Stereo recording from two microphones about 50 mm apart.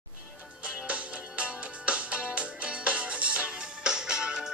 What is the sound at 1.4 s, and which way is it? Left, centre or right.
Music, right.